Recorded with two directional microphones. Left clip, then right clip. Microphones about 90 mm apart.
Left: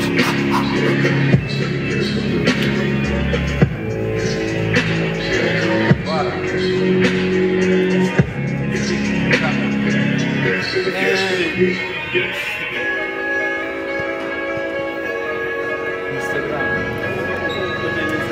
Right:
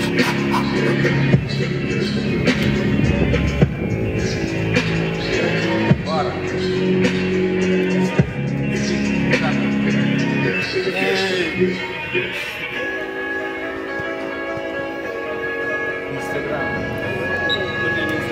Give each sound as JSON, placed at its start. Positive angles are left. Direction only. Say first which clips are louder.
{"t": 0.2, "sound": "music", "louder": "left 1 dB", "side_deg": -5}
{"t": 5.3, "sound": "music", "louder": "left 2 dB", "side_deg": 35}
{"t": 9.3, "sound": "music", "louder": "left 3 dB", "side_deg": -5}